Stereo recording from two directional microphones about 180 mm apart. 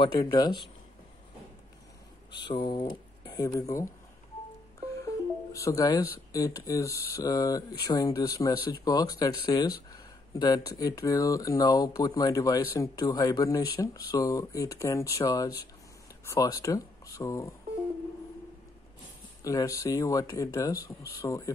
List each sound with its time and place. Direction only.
0.0 s speech: 25° left (ahead or behind)
2.4 s speech: 25° left (ahead or behind)
4.9 s music: 15° left (ahead or behind)
6.1 s speech: 20° left (ahead or behind)
19.4 s speech: 20° left (ahead or behind)